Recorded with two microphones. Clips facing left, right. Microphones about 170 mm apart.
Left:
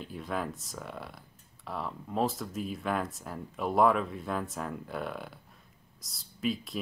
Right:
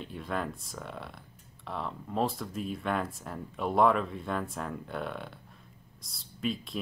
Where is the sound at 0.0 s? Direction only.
Centre (ahead or behind).